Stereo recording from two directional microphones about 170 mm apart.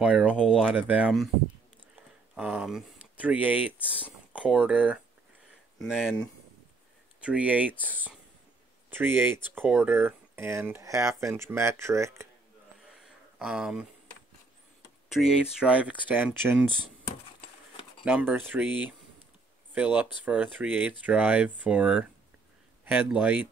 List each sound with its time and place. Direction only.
0.0 s speech: 5° right (ahead or behind)
2.3 s speech: 5° right (ahead or behind)
7.2 s speech: 5° right (ahead or behind)
13.0 s a sound: 5° right (ahead or behind)
15.0 s speech: centre (ahead or behind)
18.0 s speech: 10° right (ahead or behind)